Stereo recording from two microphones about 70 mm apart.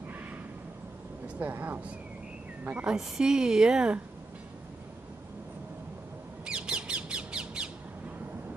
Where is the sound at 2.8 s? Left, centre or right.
Centre.